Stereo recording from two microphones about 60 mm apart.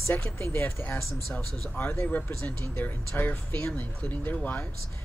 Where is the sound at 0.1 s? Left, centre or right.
Left.